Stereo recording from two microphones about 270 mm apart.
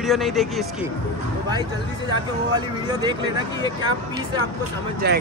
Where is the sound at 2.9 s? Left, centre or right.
Centre.